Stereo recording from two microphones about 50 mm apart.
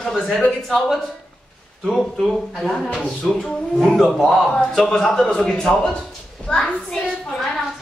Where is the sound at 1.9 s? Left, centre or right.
Centre.